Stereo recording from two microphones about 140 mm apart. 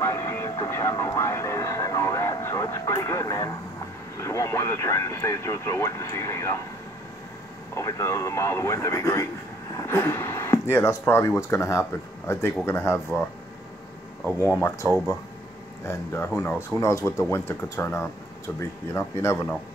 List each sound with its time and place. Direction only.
0.0 s speech: 20° left (ahead or behind)
7.7 s speech: 25° left (ahead or behind)
14.8 s speech: 20° left (ahead or behind)